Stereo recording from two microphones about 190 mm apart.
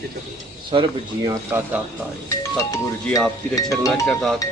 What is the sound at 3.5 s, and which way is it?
Speech, 15° left (ahead or behind).